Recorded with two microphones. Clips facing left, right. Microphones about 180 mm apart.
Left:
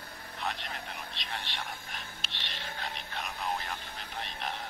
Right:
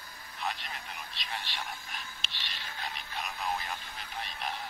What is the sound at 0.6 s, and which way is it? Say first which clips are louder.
Vehicle: left 3 dB; 65° left (ahead or behind).